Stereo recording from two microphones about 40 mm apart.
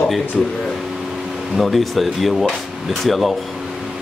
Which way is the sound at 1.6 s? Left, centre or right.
Centre.